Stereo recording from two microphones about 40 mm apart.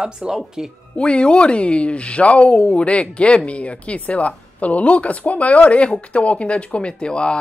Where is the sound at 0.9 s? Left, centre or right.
Left.